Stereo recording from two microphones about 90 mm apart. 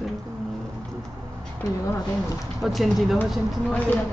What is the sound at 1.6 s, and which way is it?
Speech, 40° left (ahead or behind).